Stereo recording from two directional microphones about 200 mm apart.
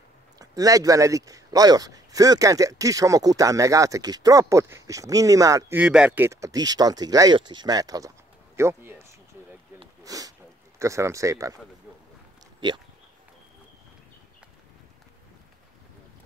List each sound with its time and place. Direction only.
0.4 s speech: 15° right (ahead or behind)
10.0 s speech: 15° right (ahead or behind)
12.5 s a sound: 25° right (ahead or behind)